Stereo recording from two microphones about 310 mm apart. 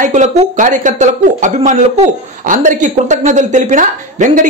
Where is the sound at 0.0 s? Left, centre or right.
Right.